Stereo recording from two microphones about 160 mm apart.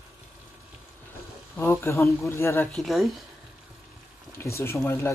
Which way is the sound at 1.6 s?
15° left (ahead or behind).